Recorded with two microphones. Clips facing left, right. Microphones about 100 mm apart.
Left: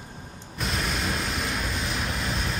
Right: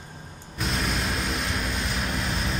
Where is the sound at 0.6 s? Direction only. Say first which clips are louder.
Right 1 dB; centre (ahead or behind).